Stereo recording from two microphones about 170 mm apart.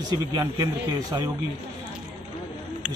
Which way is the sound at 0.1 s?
20° right (ahead or behind).